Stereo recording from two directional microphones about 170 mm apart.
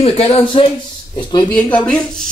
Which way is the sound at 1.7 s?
5° left (ahead or behind).